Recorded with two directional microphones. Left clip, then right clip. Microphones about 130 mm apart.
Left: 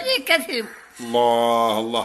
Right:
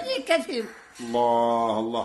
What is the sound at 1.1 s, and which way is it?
Mantra, 30° left (ahead or behind).